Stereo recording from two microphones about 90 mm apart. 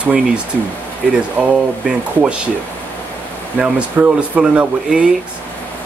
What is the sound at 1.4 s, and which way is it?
Speech, 15° right (ahead or behind).